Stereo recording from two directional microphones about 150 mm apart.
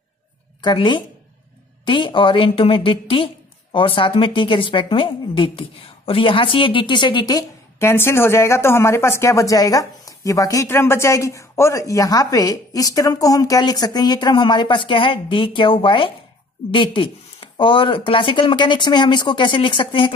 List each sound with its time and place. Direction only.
0.6 s a woman's voice: 30° left (ahead or behind)